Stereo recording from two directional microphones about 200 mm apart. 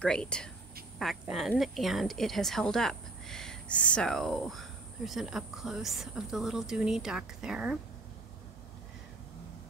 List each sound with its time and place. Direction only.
0.0 s speech: 5° left (ahead or behind)